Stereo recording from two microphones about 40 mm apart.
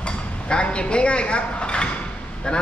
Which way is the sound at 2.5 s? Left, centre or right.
Left.